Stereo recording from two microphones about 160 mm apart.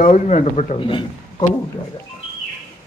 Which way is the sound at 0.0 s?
45° left (ahead or behind).